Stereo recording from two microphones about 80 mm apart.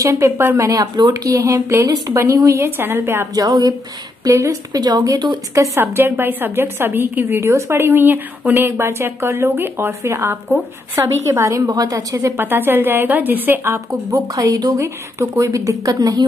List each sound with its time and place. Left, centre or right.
0.0 s speech: right
1.1 s speech: right
3.3 s speech: right
5.8 s a woman's voice: right
7.4 s speech: right
12.4 s a woman's voice: right
14.1 s speech: right